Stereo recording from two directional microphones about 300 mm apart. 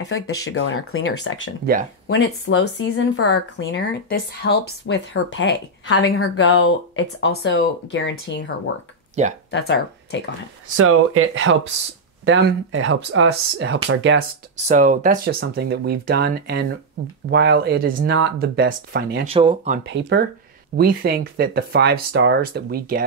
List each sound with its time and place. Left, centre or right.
0.0 s a woman's voice: left
9.2 s speech: right
9.5 s speech: left
10.8 s speech: right
14.7 s speech: right
19.2 s speech: centre
19.8 s speech: right